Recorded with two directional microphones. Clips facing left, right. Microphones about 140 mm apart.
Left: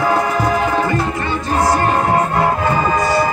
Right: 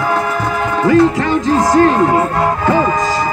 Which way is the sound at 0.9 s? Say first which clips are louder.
Right 8 dB; 90° right.